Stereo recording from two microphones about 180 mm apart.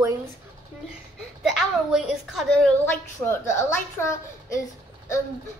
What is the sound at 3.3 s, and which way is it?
A woman's voice, 15° left (ahead or behind).